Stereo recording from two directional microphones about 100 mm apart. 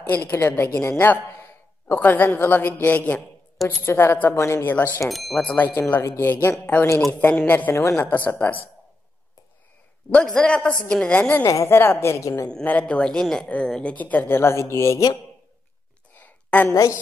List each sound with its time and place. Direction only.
0.1 s a woman's voice: 20° left (ahead or behind)
5.0 s speech: centre (ahead or behind)
5.4 s a woman's voice: 15° left (ahead or behind)
10.1 s a woman's voice: 10° left (ahead or behind)
11.4 s a woman's voice: 30° left (ahead or behind)
12.4 s a woman's voice: 10° left (ahead or behind); by 15.1 s 30° left (ahead or behind)
16.2 s a sound: 15° left (ahead or behind)
16.7 s a woman's voice: 35° left (ahead or behind)